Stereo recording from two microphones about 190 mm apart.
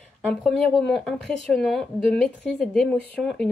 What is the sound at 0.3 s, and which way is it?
Speech, 5° left (ahead or behind).